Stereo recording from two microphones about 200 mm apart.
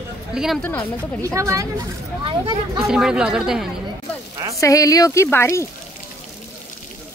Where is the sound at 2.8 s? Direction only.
5° right (ahead or behind).